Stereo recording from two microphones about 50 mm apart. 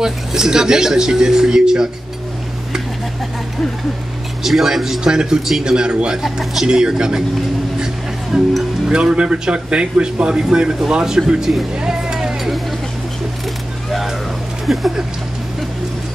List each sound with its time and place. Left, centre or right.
0.0 s a man's voice: centre
4.4 s a man's voice: centre
8.3 s a man's voice: centre
11.7 s music: centre
14.7 s speech: centre